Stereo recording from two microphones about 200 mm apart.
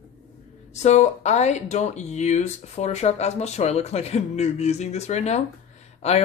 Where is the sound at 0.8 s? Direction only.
35° left (ahead or behind).